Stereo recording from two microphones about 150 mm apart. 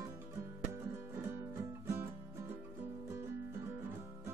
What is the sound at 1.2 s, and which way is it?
Music, 20° right (ahead or behind).